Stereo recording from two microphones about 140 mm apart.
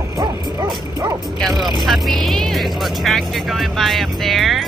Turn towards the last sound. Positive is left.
turn(degrees=0)  # may be behind; listen again after turning